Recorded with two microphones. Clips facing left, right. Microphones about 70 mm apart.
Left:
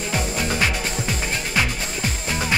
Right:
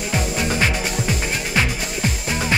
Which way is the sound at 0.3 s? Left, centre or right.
Centre.